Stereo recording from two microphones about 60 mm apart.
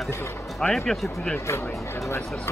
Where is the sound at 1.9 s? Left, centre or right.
Left.